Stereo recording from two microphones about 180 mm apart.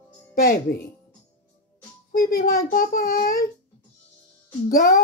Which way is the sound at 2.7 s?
50° left (ahead or behind).